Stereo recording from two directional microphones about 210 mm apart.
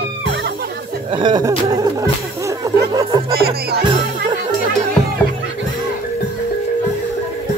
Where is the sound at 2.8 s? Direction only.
20° right (ahead or behind).